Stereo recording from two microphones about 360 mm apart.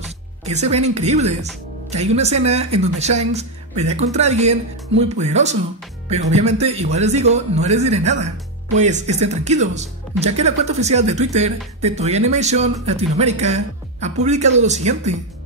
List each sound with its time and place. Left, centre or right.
0.5 s speech: centre